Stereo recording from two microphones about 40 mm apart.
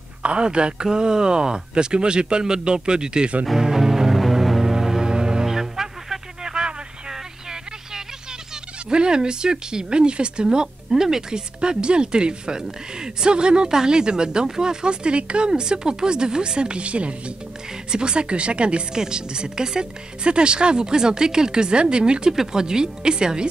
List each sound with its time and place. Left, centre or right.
0.2 s a woman's voice: right
3.5 s music: centre
8.9 s a woman's voice: right
22.3 s a woman's voice: centre